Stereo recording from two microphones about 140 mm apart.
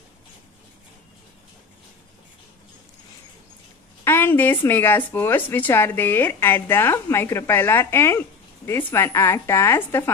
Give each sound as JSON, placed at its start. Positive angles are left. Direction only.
{"t": 4.0, "sound": "a woman's voice", "side_deg": 15}